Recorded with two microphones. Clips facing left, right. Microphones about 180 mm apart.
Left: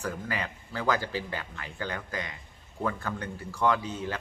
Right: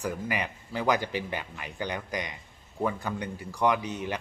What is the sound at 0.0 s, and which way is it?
Speech, 15° right (ahead or behind).